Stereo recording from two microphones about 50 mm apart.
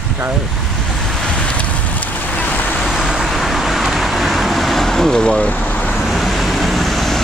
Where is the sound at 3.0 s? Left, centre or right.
Centre; by 6.0 s left.